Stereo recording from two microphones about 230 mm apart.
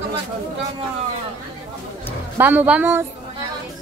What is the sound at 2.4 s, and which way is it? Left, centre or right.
Speech, centre.